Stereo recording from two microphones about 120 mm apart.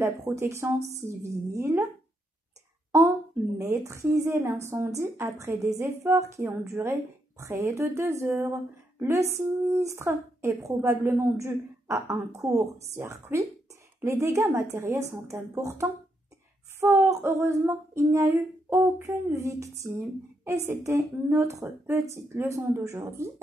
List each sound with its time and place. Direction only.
0.4 s speech: 25° right (ahead or behind)
3.5 s speech: 25° right (ahead or behind)